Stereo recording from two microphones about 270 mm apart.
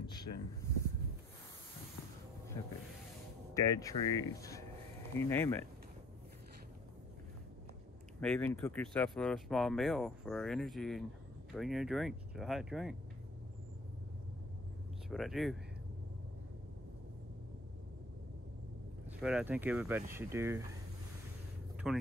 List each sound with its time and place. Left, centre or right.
0.0 s a sound: centre
3.5 s speech: centre
8.2 s speech: centre
15.0 s speech: centre
19.2 s speech: centre
21.8 s speech: centre